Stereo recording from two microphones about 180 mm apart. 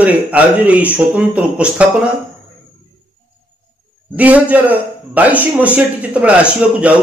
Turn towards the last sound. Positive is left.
turn(degrees=-5)  # may be behind; listen again after turning